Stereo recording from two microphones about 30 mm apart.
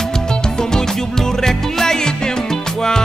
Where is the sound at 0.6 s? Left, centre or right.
Centre.